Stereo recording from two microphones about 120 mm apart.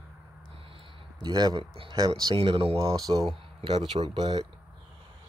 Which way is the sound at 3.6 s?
45° right (ahead or behind).